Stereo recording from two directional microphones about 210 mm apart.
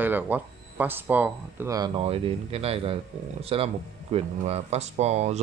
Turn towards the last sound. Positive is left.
turn(degrees=-30)  # may be behind; listen again after turning